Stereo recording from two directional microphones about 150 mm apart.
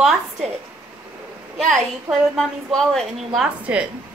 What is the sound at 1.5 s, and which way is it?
A woman's voice, centre (ahead or behind).